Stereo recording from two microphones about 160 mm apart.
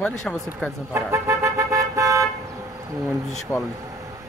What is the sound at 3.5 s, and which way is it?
Speech, 10° left (ahead or behind).